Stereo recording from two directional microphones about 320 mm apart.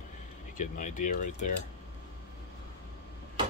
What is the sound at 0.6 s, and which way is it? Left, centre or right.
Speech, left.